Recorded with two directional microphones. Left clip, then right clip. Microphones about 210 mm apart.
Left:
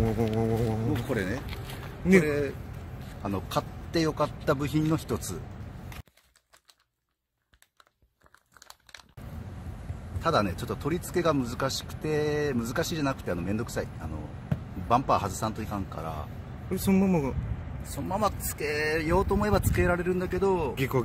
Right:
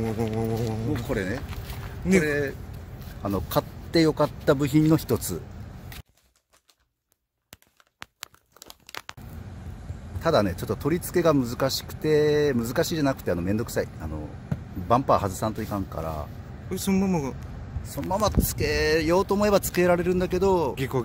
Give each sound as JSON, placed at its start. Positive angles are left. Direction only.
{"t": 0.2, "sound": "speech", "side_deg": 0}
{"t": 0.9, "sound": "speech", "side_deg": -10}
{"t": 2.2, "sound": "speech", "side_deg": -25}
{"t": 10.2, "sound": "speech", "side_deg": -40}
{"t": 14.9, "sound": "speech", "side_deg": -40}
{"t": 16.7, "sound": "speech", "side_deg": 10}
{"t": 18.0, "sound": "speech", "side_deg": -45}
{"t": 20.7, "sound": "speech", "side_deg": 0}